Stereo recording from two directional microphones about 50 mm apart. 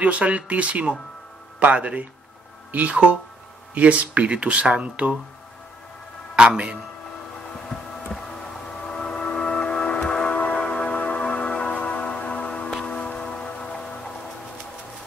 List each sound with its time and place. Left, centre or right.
0.0 s speech: right
6.3 s a man's voice: right
8.8 s train: centre
10.0 s music: centre
10.3 s music: left